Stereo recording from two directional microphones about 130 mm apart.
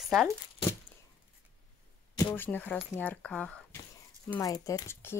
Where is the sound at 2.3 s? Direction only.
15° left (ahead or behind).